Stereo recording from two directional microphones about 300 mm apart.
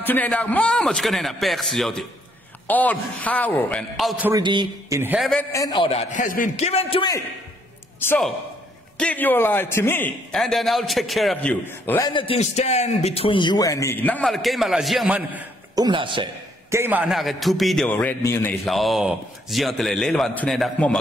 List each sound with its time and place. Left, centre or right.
0.0 s a man's voice: centre
5.5 s a man's voice: centre